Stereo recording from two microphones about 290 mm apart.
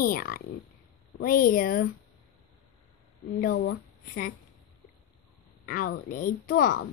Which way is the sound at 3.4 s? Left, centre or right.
Left.